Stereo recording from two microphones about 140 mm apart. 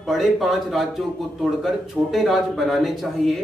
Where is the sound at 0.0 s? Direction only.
Centre (ahead or behind).